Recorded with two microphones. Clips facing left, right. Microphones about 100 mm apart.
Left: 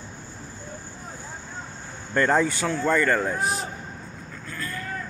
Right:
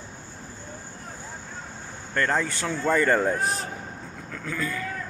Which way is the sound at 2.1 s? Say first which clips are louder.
Left 4 dB; 10° left (ahead or behind).